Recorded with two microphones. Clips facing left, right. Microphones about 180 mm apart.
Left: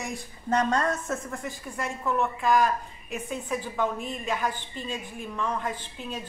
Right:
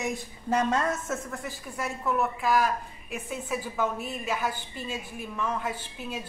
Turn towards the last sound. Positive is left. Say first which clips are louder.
# even
turn(degrees=-10)  # may be behind; listen again after turning